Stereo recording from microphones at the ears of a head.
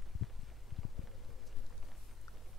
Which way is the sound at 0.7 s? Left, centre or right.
Left.